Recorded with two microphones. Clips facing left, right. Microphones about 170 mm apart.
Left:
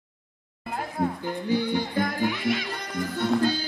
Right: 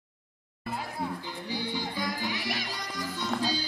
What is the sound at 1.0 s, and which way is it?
Music, 55° left (ahead or behind).